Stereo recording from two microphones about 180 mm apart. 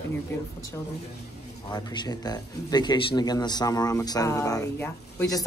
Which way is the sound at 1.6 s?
20° left (ahead or behind).